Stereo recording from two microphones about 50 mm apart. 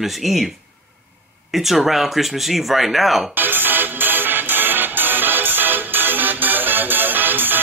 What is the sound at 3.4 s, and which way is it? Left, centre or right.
Music, right.